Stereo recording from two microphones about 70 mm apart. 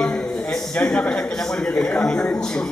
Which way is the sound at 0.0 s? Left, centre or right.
Centre.